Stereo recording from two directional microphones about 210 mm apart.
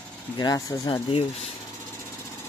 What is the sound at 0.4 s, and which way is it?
Speech, 20° left (ahead or behind).